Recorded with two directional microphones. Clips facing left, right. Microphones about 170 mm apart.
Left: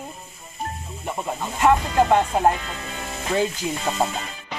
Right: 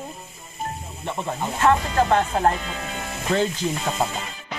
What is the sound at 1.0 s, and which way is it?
Speech, 10° left (ahead or behind).